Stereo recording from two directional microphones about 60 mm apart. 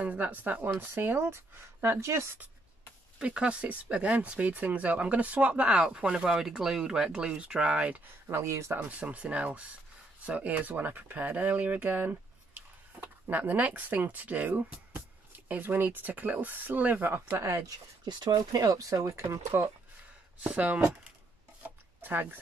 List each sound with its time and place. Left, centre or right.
0.0 s speech: right
3.2 s speech: centre
8.3 s speech: right
8.7 s speech: right
18.3 s speech: right
20.4 s speech: centre
21.6 s chopping: right